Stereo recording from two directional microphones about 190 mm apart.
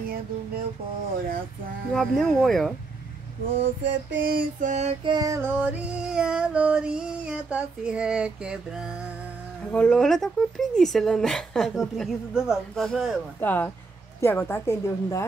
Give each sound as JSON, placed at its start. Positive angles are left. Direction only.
{"t": 2.0, "sound": "music", "side_deg": 5}
{"t": 3.8, "sound": "a sound", "side_deg": -75}
{"t": 4.2, "sound": "music", "side_deg": -45}
{"t": 9.7, "sound": "music", "side_deg": 5}
{"t": 13.4, "sound": "a woman's voice", "side_deg": 10}